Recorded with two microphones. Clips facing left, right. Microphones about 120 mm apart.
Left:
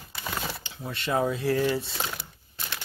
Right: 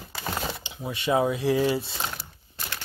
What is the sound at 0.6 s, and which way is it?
Speech, 15° right (ahead or behind).